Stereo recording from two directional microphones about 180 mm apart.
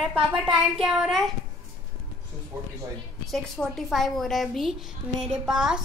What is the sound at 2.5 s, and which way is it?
Speech, 15° right (ahead or behind).